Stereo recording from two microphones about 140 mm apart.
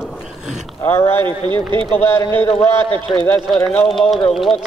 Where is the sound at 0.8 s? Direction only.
15° left (ahead or behind).